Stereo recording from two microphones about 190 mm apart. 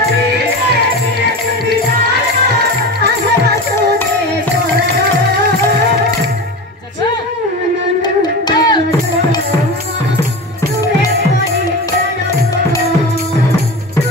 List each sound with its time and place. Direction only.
8.0 s music: 20° left (ahead or behind)